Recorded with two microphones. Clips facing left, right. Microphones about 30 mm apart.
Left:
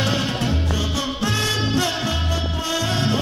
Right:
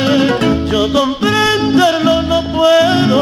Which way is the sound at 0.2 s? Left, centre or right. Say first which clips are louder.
Right 11 dB; right.